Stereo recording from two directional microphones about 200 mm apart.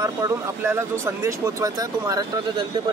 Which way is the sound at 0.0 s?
15° right (ahead or behind).